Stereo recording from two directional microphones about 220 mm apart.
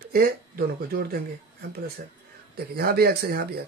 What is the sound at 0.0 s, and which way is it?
Speech, 45° right (ahead or behind).